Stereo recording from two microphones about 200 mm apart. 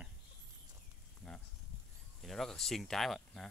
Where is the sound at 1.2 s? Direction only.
10° left (ahead or behind).